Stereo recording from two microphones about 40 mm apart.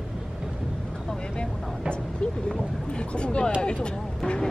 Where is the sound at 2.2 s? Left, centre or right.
Left.